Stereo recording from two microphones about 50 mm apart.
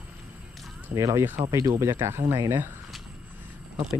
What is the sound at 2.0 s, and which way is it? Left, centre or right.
Speech, right.